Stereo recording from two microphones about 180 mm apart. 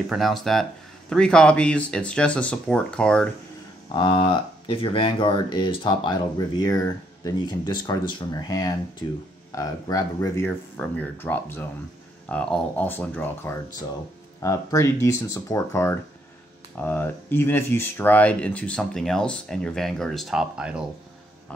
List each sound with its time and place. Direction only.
0.1 s speech: centre (ahead or behind)
3.9 s speech: 30° left (ahead or behind); by 20.8 s 5° right (ahead or behind)